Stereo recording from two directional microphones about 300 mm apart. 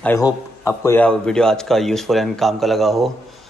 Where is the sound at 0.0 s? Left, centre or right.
Centre.